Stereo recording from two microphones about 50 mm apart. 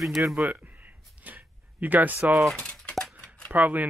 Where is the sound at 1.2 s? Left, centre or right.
Right.